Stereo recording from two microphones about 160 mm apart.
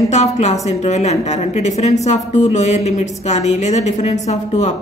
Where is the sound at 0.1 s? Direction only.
45° left (ahead or behind).